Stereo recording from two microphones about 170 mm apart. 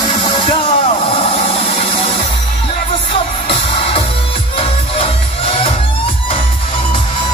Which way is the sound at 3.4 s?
35° left (ahead or behind).